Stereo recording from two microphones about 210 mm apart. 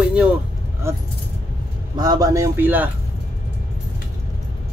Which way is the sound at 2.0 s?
15° right (ahead or behind).